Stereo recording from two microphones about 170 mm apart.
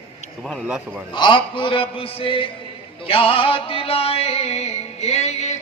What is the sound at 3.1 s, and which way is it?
Music, 30° left (ahead or behind).